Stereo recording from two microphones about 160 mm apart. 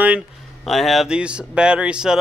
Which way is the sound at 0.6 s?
Centre (ahead or behind).